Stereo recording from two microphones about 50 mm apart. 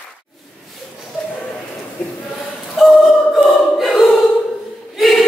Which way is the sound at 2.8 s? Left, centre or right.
Centre.